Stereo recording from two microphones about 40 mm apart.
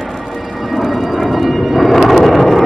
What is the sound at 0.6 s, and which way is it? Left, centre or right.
Aircraft, centre.